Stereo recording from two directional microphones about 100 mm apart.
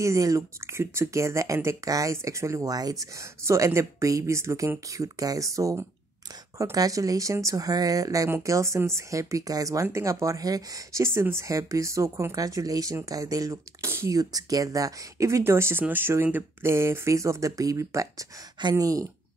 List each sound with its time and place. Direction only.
0.0 s speech: 30° right (ahead or behind)